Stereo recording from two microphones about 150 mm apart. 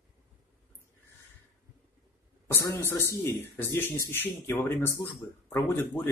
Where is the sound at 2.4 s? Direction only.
15° left (ahead or behind).